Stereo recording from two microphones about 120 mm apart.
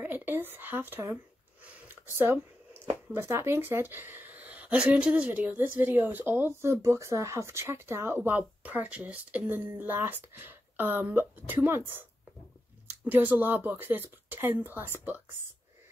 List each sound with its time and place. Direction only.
0.0 s speech: 15° right (ahead or behind)
2.1 s a sound: 20° right (ahead or behind)
3.1 s speech: 20° right (ahead or behind)